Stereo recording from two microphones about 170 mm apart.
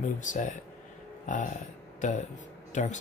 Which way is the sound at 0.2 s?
50° left (ahead or behind).